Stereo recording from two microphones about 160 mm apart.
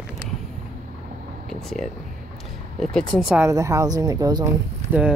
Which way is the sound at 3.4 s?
20° right (ahead or behind).